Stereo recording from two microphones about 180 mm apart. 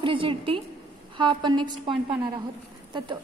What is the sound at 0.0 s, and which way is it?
A woman's voice, 30° right (ahead or behind).